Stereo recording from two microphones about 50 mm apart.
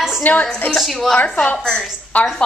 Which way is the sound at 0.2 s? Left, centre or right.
Left.